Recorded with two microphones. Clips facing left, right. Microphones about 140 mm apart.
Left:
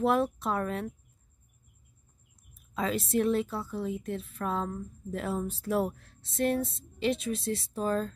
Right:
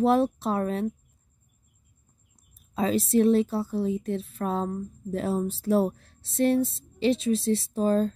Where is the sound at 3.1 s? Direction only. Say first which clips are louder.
Right 7 dB; 30° right (ahead or behind).